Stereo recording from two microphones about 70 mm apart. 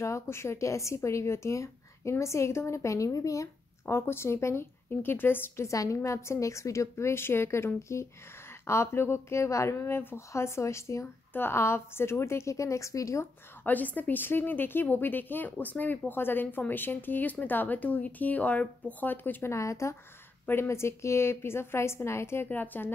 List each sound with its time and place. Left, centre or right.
0.0 s a woman's voice: left
3.8 s a woman's voice: left
4.8 s a woman's voice: left
5.7 s a woman's voice: left
11.3 s a woman's voice: left
13.7 s speech: left
19.5 s a woman's voice: left
22.5 s speech: left